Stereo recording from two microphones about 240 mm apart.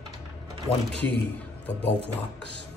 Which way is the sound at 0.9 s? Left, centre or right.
Centre.